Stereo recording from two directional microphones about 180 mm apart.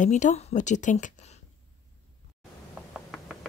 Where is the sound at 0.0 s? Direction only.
45° left (ahead or behind).